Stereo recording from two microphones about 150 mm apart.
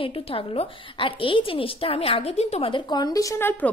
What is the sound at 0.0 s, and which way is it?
A woman's voice, 35° left (ahead or behind).